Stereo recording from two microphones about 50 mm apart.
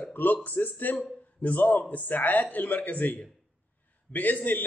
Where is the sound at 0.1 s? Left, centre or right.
Left.